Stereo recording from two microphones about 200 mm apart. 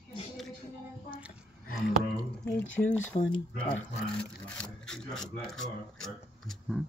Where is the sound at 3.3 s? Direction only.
5° left (ahead or behind).